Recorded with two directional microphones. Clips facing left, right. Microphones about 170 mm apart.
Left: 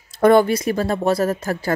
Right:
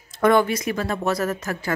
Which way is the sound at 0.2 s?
35° left (ahead or behind).